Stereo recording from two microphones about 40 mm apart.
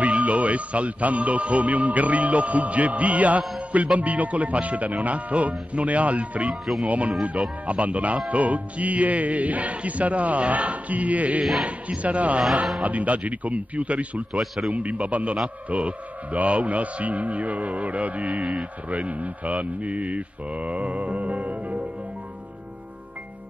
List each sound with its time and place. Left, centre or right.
0.0 s a man's voice: right